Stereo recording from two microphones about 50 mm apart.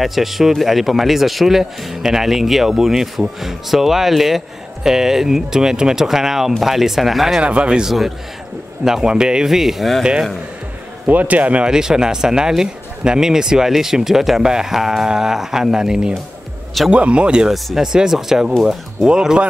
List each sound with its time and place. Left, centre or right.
0.0 s a man's voice: centre
7.4 s speech: right
7.8 s a man's voice: centre
11.1 s speech: right
11.6 s a man's voice: centre
19.0 s speech: centre